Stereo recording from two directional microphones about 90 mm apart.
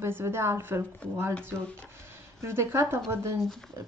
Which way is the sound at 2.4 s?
25° right (ahead or behind).